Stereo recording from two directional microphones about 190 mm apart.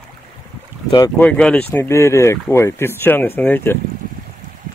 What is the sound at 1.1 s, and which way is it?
Speech, 5° left (ahead or behind).